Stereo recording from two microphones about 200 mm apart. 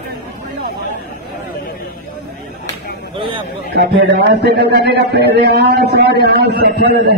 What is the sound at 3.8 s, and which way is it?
A man's voice, 55° right (ahead or behind).